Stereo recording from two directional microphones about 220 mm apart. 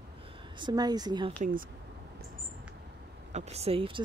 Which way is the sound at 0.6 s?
20° right (ahead or behind).